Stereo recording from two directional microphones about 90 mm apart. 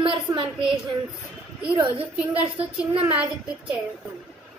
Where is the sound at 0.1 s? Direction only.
65° right (ahead or behind).